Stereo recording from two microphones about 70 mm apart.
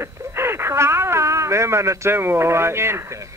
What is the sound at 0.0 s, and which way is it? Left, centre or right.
Speech, right.